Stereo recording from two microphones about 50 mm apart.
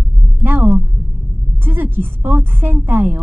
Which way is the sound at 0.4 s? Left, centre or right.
Right.